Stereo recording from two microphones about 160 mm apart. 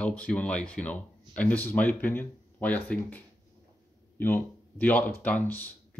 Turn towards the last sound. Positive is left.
turn(degrees=10)  # may be behind; listen again after turning